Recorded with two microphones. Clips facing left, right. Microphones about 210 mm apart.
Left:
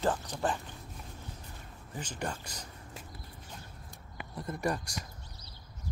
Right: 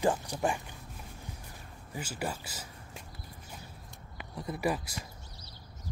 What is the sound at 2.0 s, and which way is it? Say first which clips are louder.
Speech: right 1 dB; 5° right (ahead or behind).